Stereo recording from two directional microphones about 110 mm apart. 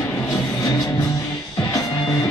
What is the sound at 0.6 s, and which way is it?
Music, 35° left (ahead or behind).